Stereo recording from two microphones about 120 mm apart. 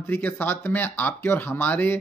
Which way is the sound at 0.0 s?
15° left (ahead or behind).